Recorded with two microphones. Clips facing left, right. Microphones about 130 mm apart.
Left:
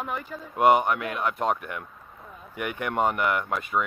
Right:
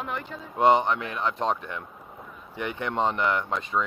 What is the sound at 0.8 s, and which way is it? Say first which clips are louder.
Speech: left 1 dB; 25° right (ahead or behind).